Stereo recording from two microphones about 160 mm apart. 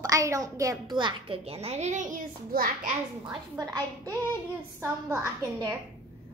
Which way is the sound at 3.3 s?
25° right (ahead or behind).